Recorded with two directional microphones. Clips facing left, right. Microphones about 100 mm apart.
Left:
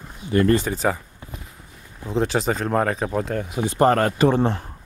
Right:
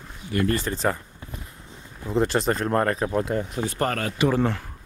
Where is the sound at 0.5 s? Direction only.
10° left (ahead or behind).